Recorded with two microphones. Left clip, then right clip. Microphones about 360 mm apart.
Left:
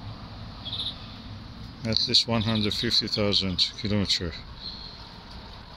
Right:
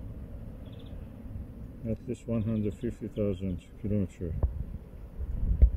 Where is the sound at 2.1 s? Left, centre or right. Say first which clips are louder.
Left 12 dB; centre.